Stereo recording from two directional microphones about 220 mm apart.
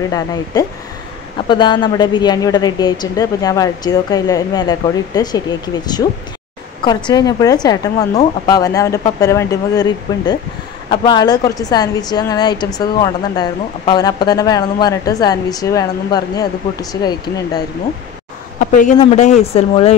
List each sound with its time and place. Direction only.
0.1 s a woman's voice: 15° left (ahead or behind)
6.8 s a woman's voice: 20° left (ahead or behind)
18.6 s a man's voice: 35° left (ahead or behind)